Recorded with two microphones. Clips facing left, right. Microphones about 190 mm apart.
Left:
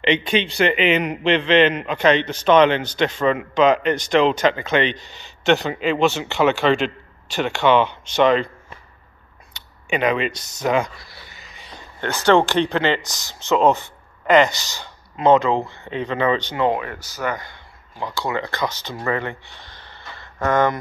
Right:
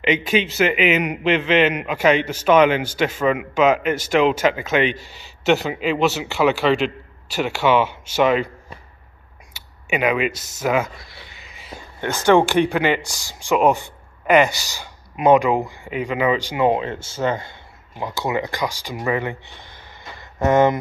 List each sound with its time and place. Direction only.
0.0 s a man's voice: 5° right (ahead or behind)
9.5 s a sound: 5° right (ahead or behind)
12.3 s a man's voice: 15° right (ahead or behind)